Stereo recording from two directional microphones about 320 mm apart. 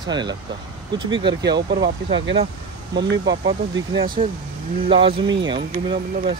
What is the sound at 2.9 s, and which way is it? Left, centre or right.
Speech, right.